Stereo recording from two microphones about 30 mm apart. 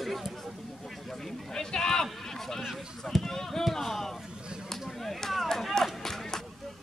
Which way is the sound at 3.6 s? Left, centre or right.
Centre.